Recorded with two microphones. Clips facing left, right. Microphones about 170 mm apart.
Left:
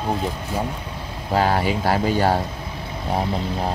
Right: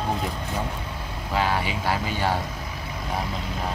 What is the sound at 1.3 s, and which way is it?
Speech, 40° left (ahead or behind).